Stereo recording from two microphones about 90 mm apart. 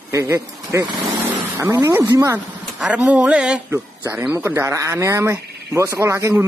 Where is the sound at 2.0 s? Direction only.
35° right (ahead or behind).